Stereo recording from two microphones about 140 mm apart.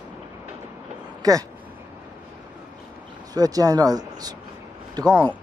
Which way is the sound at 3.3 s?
25° right (ahead or behind).